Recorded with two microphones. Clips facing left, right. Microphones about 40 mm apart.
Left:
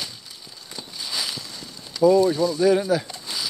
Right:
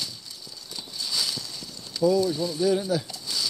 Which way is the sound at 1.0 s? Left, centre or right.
Left.